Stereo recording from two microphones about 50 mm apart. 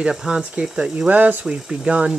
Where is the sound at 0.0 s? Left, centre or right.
Centre.